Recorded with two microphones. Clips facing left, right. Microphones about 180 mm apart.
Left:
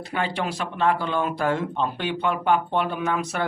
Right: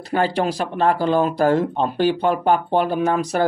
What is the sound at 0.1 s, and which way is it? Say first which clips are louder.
Speech: right 7 dB; 40° right (ahead or behind).